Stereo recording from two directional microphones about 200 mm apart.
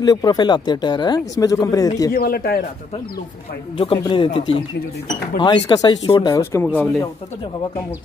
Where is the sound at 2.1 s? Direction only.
50° left (ahead or behind).